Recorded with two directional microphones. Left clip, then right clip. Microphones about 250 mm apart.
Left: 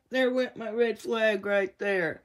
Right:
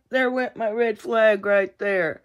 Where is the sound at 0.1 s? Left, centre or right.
Centre.